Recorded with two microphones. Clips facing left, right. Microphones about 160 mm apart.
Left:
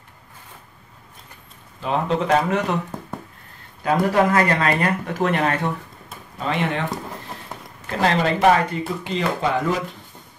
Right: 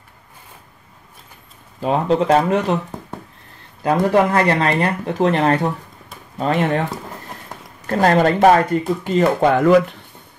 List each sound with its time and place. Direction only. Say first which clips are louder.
1.8 s speech: right 5 dB; 40° right (ahead or behind)
4.1 s speech: right 3 dB; 30° right (ahead or behind)
7.8 s speech: right 6 dB; 45° right (ahead or behind); by 9.8 s 60° right (ahead or behind)